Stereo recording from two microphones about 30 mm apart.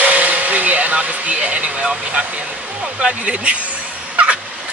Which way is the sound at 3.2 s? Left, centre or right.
Right.